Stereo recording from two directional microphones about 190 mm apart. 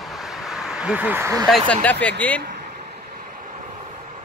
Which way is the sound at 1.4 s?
5° left (ahead or behind).